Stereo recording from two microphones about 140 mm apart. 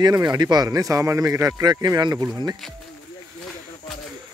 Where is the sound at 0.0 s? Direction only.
30° right (ahead or behind).